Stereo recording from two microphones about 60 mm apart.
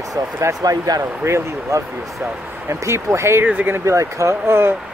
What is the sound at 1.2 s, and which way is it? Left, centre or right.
Speech, right.